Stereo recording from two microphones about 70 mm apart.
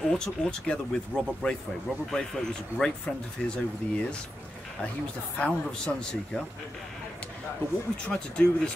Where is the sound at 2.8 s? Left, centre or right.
Centre.